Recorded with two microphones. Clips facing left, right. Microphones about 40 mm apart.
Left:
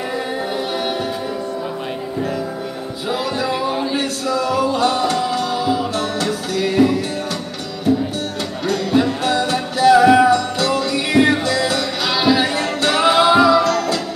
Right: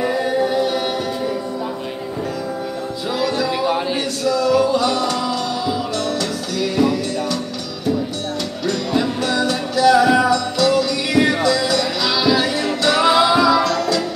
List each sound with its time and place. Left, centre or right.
0.4 s a capella: centre
3.1 s music: left
8.6 s music: left